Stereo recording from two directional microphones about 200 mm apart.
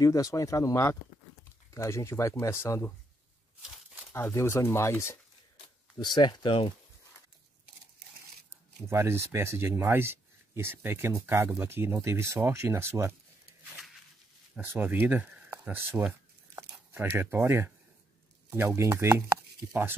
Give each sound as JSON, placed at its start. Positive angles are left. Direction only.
{"t": 0.0, "sound": "speech", "side_deg": 15}
{"t": 4.1, "sound": "speech", "side_deg": 10}
{"t": 8.8, "sound": "speech", "side_deg": -15}
{"t": 14.5, "sound": "speech", "side_deg": -10}